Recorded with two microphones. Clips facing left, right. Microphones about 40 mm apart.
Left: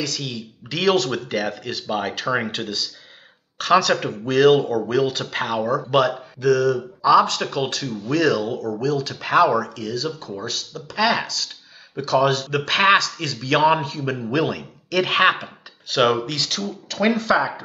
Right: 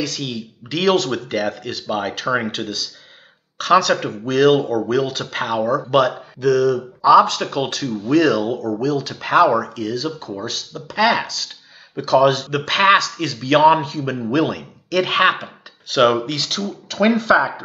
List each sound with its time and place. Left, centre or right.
0.0 s speech: centre